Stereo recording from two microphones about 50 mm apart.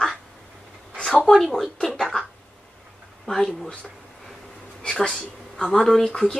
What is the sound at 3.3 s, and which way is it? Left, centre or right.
Speech, centre.